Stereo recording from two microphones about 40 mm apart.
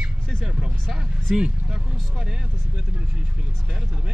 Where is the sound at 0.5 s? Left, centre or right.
Centre.